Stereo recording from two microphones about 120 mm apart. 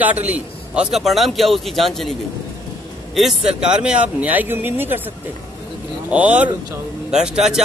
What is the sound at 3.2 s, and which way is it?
A man's voice, 5° right (ahead or behind).